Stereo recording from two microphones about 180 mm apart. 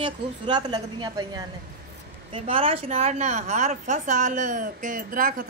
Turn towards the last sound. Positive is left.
turn(degrees=-50)  # may be behind; listen again after turning